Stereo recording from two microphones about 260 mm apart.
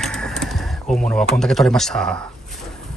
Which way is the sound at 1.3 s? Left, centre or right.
Centre.